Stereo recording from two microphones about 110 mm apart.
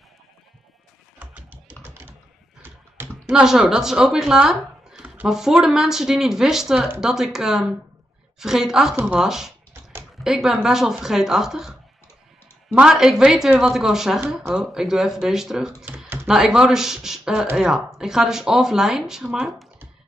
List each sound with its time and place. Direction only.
1.8 s typing: 20° right (ahead or behind)
3.3 s speech: 5° right (ahead or behind)
12.7 s speech: 5° right (ahead or behind)